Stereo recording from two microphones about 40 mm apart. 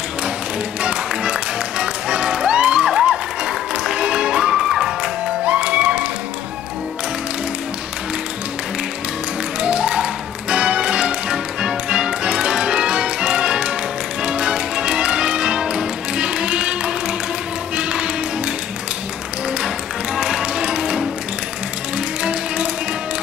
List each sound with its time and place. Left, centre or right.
0.8 s music: right
2.9 s music: centre
5.4 s music: right
9.6 s music: right
20.2 s music: centre
22.2 s music: right